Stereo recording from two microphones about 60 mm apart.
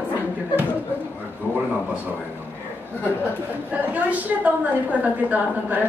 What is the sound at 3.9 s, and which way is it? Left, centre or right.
A woman's voice, right.